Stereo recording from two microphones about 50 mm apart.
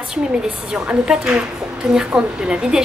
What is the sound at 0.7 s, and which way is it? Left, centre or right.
A woman's voice, centre.